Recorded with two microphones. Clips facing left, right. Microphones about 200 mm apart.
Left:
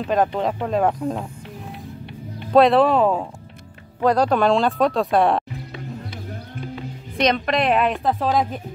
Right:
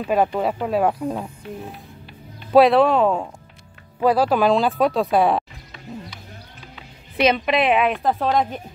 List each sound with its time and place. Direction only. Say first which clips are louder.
0.0 s a woman's voice: even; 5° right (ahead or behind)
2.5 s a woman's voice: right 1 dB; centre (ahead or behind)
6.0 s music: left 7 dB; 55° left (ahead or behind)
7.2 s a woman's voice: right 1 dB; 5° right (ahead or behind)